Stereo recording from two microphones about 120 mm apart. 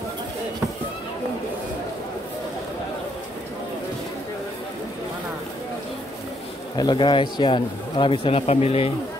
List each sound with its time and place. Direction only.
6.8 s speech: 40° left (ahead or behind); by 8.9 s 55° left (ahead or behind)